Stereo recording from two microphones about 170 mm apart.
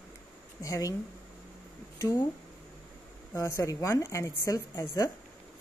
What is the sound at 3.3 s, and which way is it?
A woman's voice, 15° left (ahead or behind).